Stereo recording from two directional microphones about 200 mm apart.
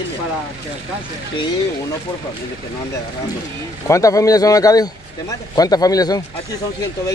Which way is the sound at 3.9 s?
15° left (ahead or behind).